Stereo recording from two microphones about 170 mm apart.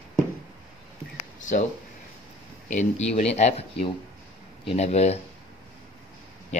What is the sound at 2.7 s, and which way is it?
Speech, 45° left (ahead or behind).